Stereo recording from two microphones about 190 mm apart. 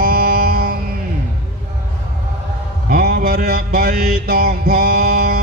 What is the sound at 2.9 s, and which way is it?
Mantra, 50° right (ahead or behind).